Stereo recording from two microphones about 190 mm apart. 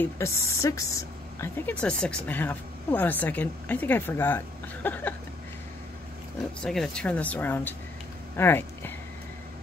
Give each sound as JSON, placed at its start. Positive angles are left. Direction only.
{"t": 0.0, "sound": "a woman's voice", "side_deg": 15}
{"t": 6.6, "sound": "a woman's voice", "side_deg": 5}